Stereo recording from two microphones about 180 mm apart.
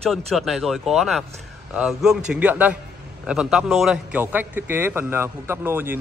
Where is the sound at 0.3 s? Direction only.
Centre (ahead or behind).